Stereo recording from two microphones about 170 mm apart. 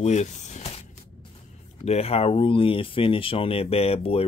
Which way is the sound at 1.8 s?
40° left (ahead or behind).